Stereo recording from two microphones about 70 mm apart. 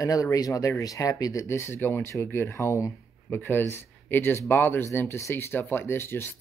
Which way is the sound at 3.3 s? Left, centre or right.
Left.